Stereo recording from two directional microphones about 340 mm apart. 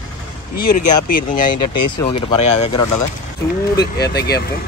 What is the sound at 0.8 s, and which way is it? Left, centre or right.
Speech, left.